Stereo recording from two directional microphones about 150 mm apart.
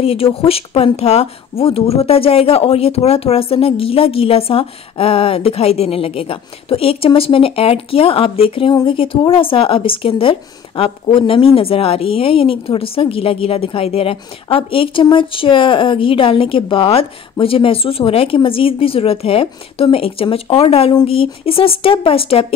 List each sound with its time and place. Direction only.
0.0 s a woman's voice: 40° left (ahead or behind)